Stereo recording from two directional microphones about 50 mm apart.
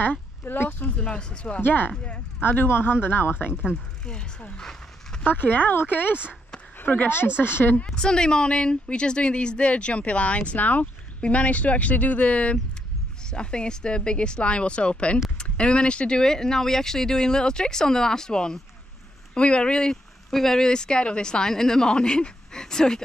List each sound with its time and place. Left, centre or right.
0.0 s speech: left
0.8 s a woman's voice: left
1.6 s speech: left
4.0 s speech: centre
5.2 s speech: left
7.8 s a woman's voice: centre